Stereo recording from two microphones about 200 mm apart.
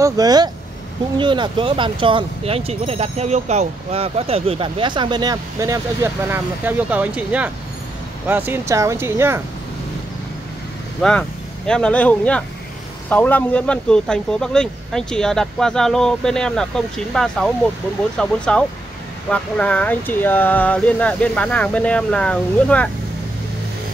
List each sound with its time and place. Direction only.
0.0 s speech: 20° right (ahead or behind)
11.0 s speech: 5° left (ahead or behind)